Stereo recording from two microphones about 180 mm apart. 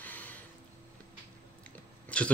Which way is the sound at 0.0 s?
10° left (ahead or behind).